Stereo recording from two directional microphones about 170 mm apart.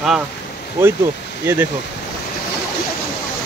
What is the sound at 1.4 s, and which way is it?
Speech, 10° right (ahead or behind).